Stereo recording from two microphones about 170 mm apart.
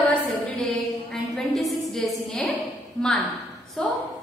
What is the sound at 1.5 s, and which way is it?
Speech, centre (ahead or behind).